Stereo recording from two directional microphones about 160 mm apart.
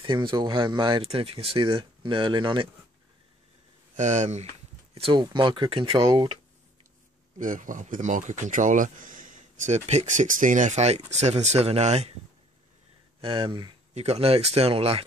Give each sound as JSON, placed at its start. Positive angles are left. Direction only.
{"t": 0.0, "sound": "speech", "side_deg": -30}
{"t": 3.9, "sound": "speech", "side_deg": -50}
{"t": 4.9, "sound": "speech", "side_deg": -30}
{"t": 7.3, "sound": "speech", "side_deg": -55}
{"t": 13.2, "sound": "speech", "side_deg": -35}